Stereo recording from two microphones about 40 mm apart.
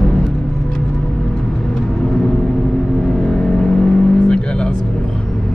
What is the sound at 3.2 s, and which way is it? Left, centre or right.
Vehicle, centre.